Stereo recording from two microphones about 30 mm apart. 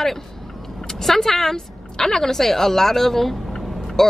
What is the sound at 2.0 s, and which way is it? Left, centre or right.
Speech, centre.